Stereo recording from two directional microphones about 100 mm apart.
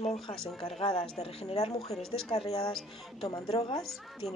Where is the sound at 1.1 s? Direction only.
90° left.